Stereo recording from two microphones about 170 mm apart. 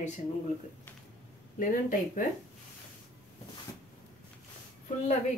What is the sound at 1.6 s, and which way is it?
Speech, 50° left (ahead or behind).